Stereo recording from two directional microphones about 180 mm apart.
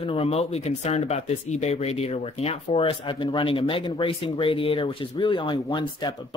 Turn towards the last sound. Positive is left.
turn(degrees=25)  # may be behind; listen again after turning